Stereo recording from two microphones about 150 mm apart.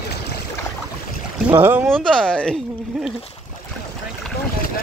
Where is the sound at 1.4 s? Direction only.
15° right (ahead or behind).